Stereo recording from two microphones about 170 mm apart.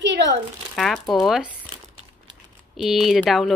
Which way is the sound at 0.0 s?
90° right.